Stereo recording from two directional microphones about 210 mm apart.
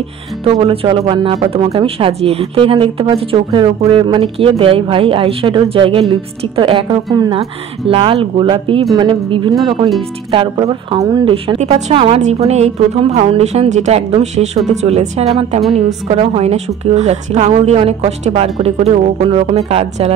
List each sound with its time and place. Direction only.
0.5 s speech: 25° right (ahead or behind)